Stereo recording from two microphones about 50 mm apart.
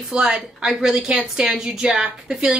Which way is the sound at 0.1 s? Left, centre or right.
Centre.